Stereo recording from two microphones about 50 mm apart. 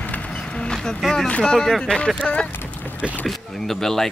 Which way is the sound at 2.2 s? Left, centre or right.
Left.